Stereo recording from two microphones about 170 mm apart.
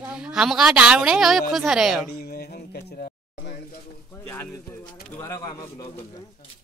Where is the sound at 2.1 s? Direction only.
70° left (ahead or behind).